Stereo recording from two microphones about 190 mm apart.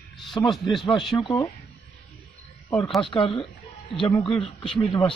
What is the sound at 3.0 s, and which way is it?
Speech, 25° left (ahead or behind).